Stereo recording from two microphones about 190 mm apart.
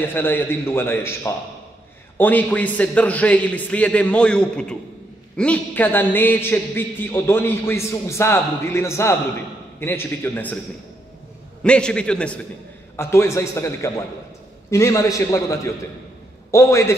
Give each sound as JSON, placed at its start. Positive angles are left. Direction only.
{"t": 0.1, "sound": "a man's voice", "side_deg": 10}
{"t": 11.6, "sound": "a man's voice", "side_deg": 5}